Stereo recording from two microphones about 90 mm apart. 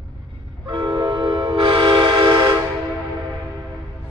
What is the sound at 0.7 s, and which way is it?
Vehicle, 60° right (ahead or behind).